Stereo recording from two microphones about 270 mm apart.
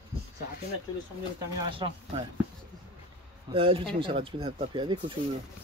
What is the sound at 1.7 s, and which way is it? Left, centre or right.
Speech, centre.